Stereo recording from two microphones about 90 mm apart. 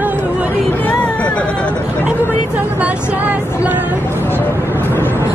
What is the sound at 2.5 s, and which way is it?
Speech, 15° right (ahead or behind).